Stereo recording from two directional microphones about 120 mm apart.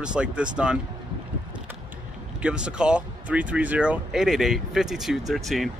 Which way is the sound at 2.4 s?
10° right (ahead or behind).